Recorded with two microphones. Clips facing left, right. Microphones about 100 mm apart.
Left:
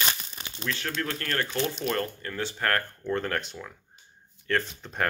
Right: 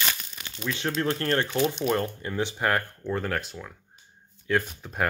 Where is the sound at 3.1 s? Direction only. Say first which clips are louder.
Even; centre (ahead or behind).